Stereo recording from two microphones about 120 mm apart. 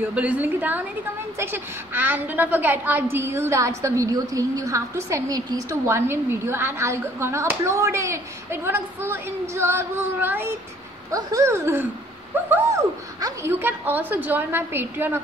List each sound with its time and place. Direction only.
0.0 s a woman's voice: 10° right (ahead or behind)
11.1 s a woman's voice: 30° right (ahead or behind)